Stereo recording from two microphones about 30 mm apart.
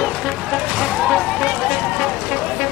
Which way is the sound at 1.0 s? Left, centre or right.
Centre.